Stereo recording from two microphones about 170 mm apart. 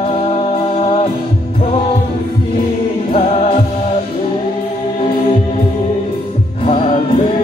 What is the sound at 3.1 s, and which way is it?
Music, 40° left (ahead or behind).